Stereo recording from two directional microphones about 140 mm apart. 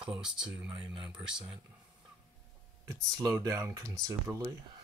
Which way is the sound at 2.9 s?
25° right (ahead or behind).